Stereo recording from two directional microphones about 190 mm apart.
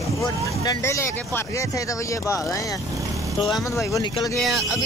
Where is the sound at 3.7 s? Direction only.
20° left (ahead or behind).